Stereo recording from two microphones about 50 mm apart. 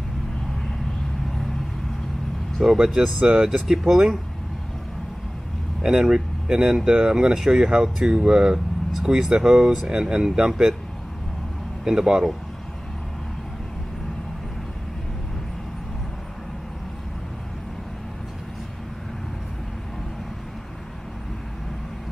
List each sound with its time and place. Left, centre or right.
2.6 s speech: centre
5.8 s speech: centre
8.9 s speech: centre
10.5 s speech: centre
11.8 s speech: centre